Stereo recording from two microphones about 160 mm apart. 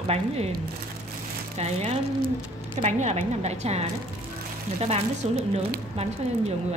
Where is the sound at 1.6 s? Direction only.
45° right (ahead or behind).